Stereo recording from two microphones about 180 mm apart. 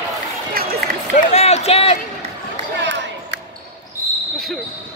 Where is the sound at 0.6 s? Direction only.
55° right (ahead or behind).